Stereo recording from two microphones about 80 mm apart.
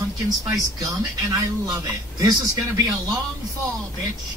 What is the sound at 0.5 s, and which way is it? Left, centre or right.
A man's voice, right.